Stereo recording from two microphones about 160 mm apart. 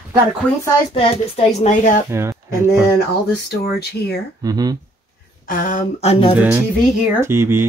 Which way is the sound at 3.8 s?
90° left.